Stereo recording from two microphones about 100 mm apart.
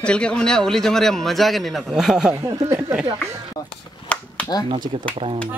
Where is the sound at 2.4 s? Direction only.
35° right (ahead or behind).